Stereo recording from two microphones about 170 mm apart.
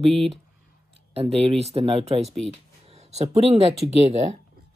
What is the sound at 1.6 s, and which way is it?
Speech, 35° right (ahead or behind).